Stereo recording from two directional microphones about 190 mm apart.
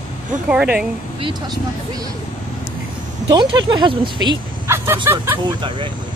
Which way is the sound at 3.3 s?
25° right (ahead or behind).